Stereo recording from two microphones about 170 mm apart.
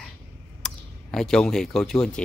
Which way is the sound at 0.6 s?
5° left (ahead or behind).